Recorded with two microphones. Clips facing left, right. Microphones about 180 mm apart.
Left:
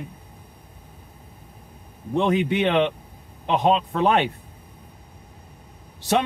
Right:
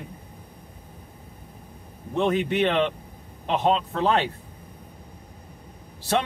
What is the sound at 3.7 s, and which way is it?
Speech, 20° left (ahead or behind).